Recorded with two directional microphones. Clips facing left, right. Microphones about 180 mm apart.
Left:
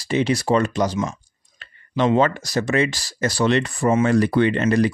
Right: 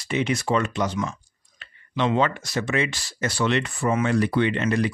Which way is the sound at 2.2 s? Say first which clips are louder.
Left 4 dB; 40° left (ahead or behind).